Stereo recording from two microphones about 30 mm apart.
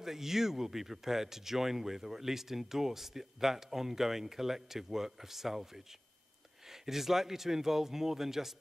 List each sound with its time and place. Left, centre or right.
0.0 s speech: centre
6.7 s speech: centre